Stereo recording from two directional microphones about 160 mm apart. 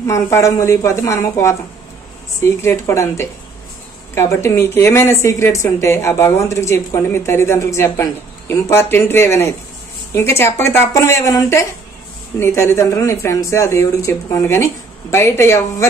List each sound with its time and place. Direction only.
0.0 s a woman's voice: 20° left (ahead or behind)